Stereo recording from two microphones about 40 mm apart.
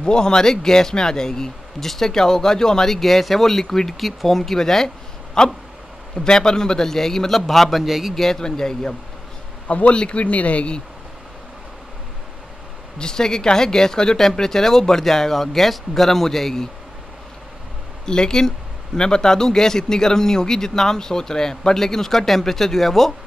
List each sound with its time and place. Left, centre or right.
0.0 s speech: centre
7.8 s speech: centre
8.1 s speech: centre
9.7 s a man's voice: left
13.0 s speech: centre
18.0 s speech: centre